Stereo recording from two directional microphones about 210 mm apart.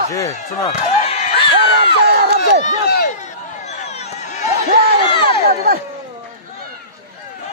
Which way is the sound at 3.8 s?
30° left (ahead or behind).